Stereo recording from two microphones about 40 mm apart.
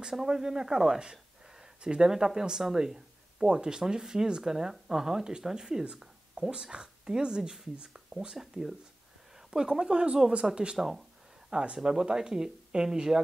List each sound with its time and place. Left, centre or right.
0.1 s speech: centre
1.1 s a sound: centre
1.8 s speech: right
10.8 s speech: centre
11.6 s speech: right